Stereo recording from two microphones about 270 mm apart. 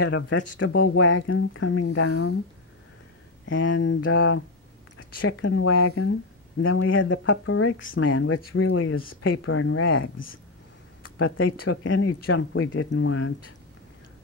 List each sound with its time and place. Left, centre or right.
0.0 s speech: left
3.4 s speech: left